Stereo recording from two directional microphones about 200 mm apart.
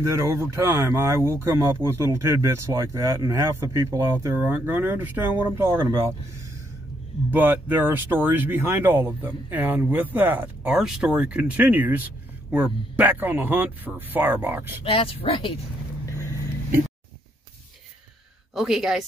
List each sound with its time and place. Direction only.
0.0 s speech: 15° right (ahead or behind)
7.2 s speech: 10° right (ahead or behind)
14.9 s speech: 30° left (ahead or behind)
18.5 s speech: centre (ahead or behind)